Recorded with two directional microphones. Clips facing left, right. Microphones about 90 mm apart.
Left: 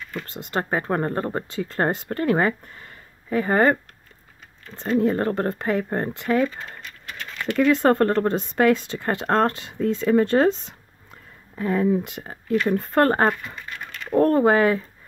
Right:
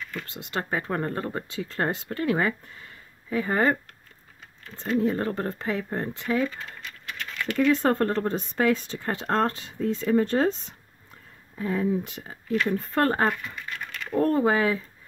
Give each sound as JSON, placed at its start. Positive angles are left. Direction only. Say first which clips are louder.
{"t": 0.2, "sound": "speech", "louder": "left 6 dB", "side_deg": 40}
{"t": 5.0, "sound": "speech", "louder": "left 4 dB", "side_deg": 55}
{"t": 7.5, "sound": "speech", "louder": "left 4 dB", "side_deg": 85}
{"t": 11.5, "sound": "speech", "louder": "left 5 dB", "side_deg": 65}